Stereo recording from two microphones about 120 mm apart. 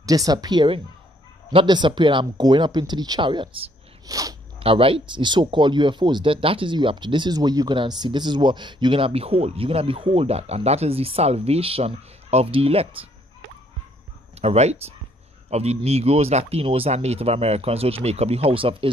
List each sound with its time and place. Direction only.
0.0 s speech: 30° right (ahead or behind); by 3.7 s 45° right (ahead or behind)
4.1 s speech: 30° right (ahead or behind)
4.6 s speech: 50° right (ahead or behind)
14.3 s speech: 60° right (ahead or behind)